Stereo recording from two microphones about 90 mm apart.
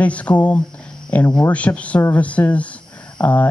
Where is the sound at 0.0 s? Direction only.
15° left (ahead or behind).